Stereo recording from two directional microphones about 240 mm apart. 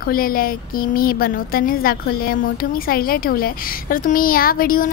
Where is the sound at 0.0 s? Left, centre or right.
Left.